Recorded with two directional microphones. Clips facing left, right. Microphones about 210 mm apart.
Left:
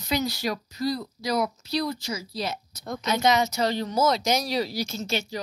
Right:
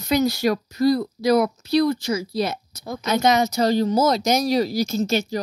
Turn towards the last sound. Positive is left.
turn(degrees=-40)  # may be behind; listen again after turning